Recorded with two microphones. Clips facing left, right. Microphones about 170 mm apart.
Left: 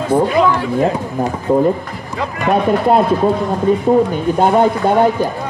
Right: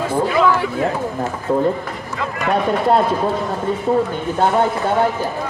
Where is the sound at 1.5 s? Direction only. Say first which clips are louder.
Left 4 dB; 15° left (ahead or behind).